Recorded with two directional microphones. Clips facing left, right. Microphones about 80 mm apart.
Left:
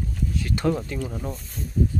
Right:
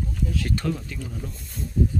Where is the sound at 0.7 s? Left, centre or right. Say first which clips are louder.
Left 5 dB; left.